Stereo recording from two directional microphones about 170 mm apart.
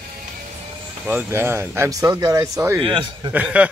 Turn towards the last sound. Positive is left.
turn(degrees=-10)  # may be behind; listen again after turning